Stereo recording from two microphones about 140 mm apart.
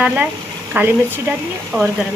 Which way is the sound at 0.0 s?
10° right (ahead or behind).